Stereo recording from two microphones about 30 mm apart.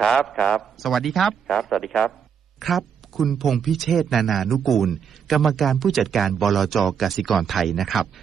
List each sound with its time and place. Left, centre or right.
0.6 s speech: centre